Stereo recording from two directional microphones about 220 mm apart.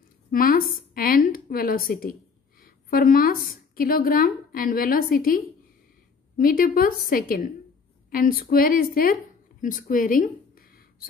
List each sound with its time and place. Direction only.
0.3 s a woman's voice: 40° left (ahead or behind)